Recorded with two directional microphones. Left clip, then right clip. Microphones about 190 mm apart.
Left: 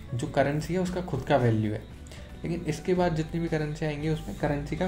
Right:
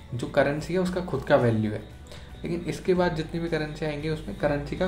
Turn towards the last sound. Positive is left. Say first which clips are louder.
# right 3 dB
turn(degrees=40)  # may be behind; listen again after turning